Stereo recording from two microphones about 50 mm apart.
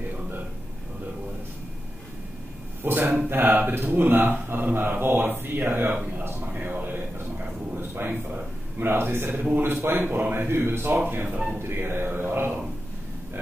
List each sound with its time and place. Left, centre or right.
2.8 s speech: right
6.4 s a sound: right
8.7 s speech: right
9.8 s speech: right
11.1 s speech: right